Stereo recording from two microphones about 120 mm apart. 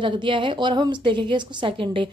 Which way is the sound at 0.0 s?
40° right (ahead or behind).